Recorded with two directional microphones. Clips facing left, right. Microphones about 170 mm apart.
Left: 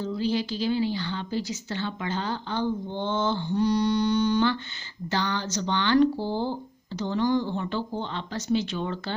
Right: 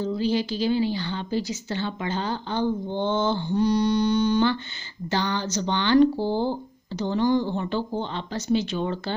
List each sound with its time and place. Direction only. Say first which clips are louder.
0.2 s a woman's voice: right 1 dB; 15° right (ahead or behind)
4.1 s a woman's voice: right 2 dB; 25° right (ahead or behind)